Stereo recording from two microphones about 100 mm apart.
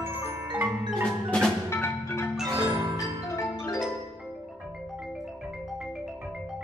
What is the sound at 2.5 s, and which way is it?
Marimba, 45° right (ahead or behind).